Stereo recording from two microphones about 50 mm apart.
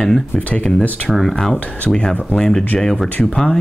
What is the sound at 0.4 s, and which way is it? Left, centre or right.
Speech, left.